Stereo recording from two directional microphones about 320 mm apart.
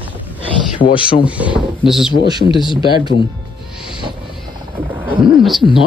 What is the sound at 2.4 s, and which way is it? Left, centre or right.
Speech, centre.